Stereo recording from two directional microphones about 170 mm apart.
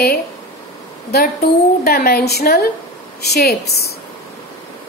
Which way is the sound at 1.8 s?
65° left (ahead or behind).